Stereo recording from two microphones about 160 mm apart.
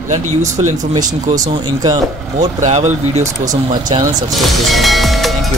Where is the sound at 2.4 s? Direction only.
45° right (ahead or behind).